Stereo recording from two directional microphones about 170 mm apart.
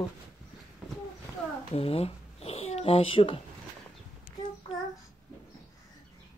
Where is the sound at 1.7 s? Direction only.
35° left (ahead or behind).